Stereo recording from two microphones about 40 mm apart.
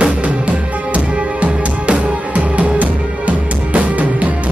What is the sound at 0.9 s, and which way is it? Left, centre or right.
Music, right.